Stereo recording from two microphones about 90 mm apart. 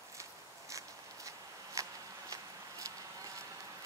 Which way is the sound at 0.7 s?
35° right (ahead or behind).